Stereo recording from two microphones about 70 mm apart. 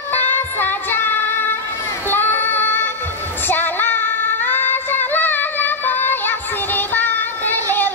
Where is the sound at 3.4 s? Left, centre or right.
Left.